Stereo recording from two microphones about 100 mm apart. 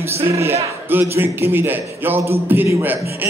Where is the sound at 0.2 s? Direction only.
25° right (ahead or behind).